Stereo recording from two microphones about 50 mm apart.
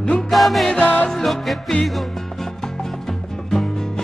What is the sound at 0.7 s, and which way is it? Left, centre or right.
Music, left.